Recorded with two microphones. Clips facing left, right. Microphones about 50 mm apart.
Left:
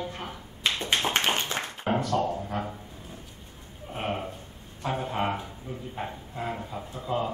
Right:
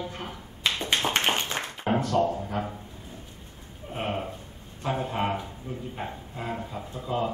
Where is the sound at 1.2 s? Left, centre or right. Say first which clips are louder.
Right 1 dB; right.